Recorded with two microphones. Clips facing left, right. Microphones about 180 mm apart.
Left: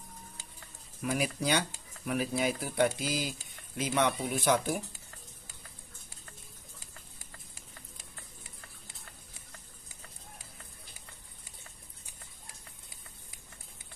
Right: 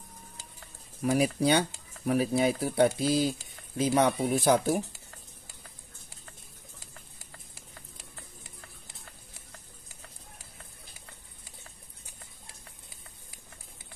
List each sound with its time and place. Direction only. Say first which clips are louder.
1.0 s speech: right 6 dB; 35° right (ahead or behind)